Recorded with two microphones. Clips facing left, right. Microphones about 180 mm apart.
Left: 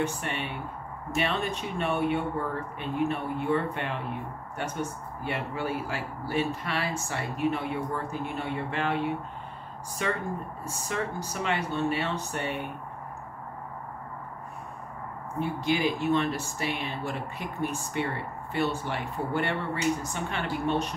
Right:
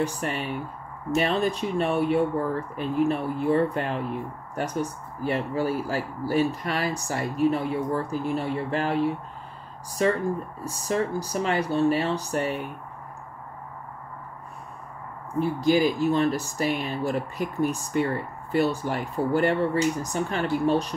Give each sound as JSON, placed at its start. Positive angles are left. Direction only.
{"t": 0.2, "sound": "speech", "side_deg": -35}
{"t": 15.3, "sound": "speech", "side_deg": -40}